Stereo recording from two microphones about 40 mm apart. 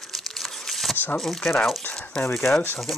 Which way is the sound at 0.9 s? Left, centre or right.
Left.